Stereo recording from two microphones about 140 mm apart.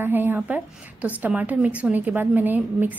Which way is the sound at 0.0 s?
15° right (ahead or behind).